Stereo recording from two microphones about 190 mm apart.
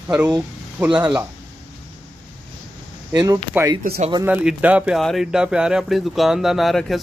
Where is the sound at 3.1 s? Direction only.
20° right (ahead or behind).